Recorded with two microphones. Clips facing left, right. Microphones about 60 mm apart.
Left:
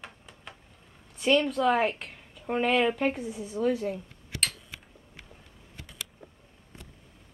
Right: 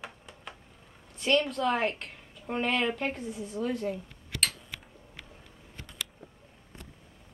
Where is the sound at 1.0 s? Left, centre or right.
Centre.